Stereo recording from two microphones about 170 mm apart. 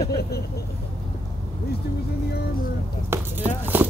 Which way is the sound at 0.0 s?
70° left (ahead or behind).